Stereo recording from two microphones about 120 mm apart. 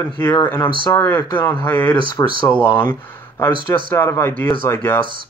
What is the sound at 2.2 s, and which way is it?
Speech, 30° left (ahead or behind).